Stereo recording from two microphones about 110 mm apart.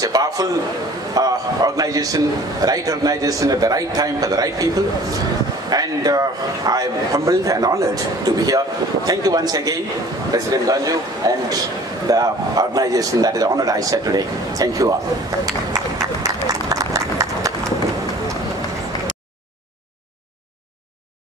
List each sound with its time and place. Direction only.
0.0 s a man's voice: 35° right (ahead or behind)
16.4 s run: 35° right (ahead or behind)